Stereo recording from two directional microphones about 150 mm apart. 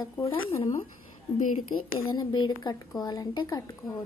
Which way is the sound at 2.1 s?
30° left (ahead or behind).